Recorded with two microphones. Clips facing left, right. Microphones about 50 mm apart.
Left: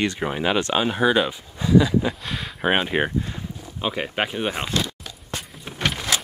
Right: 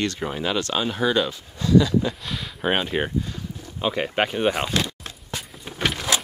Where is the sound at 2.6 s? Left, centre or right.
Centre.